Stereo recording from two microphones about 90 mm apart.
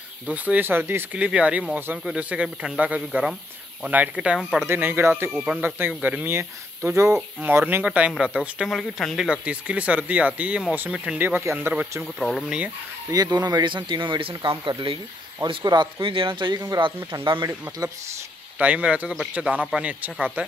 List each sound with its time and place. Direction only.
0.3 s speech: 20° right (ahead or behind)
1.1 s speech: 15° right (ahead or behind)
4.4 s speech: centre (ahead or behind)
4.6 s speech: 25° right (ahead or behind)
5.4 s speech: 15° right (ahead or behind)
8.6 s speech: 5° left (ahead or behind)
9.5 s speech: 15° right (ahead or behind)
12.0 s speech: centre (ahead or behind)
13.1 s speech: 50° right (ahead or behind); by 15.0 s 70° right (ahead or behind)
15.4 s speech: 55° right (ahead or behind)
16.0 s speech: 75° right (ahead or behind)
18.6 s speech: 15° right (ahead or behind)